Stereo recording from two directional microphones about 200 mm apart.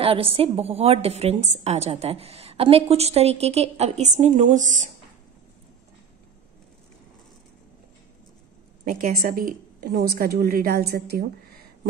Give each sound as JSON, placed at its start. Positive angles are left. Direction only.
{"t": 0.0, "sound": "a woman's voice", "side_deg": -30}
{"t": 8.8, "sound": "a woman's voice", "side_deg": -45}